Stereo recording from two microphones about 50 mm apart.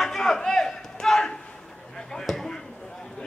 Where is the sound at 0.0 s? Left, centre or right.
Centre.